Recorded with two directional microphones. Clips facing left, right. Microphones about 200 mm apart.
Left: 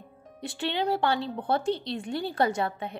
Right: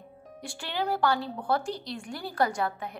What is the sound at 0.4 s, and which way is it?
A woman's voice, 20° left (ahead or behind).